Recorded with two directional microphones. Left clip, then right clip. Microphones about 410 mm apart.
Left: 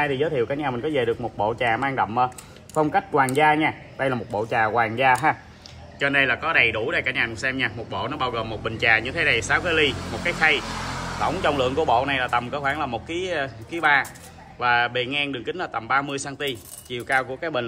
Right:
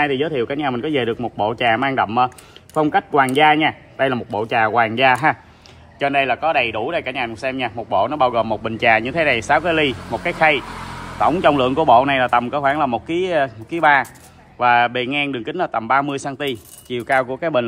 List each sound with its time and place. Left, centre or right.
0.0 s a man's voice: centre
5.9 s a man's voice: centre